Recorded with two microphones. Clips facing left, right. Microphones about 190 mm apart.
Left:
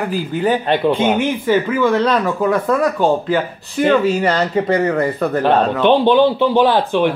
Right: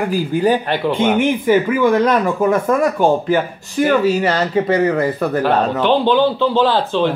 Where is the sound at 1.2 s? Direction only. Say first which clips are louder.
Right 2 dB; 15° right (ahead or behind).